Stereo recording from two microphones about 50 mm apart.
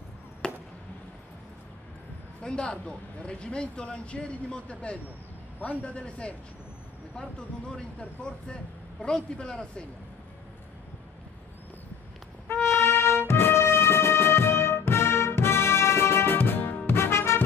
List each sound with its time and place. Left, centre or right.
0.4 s chop: centre
2.4 s speech: centre
12.4 s music: left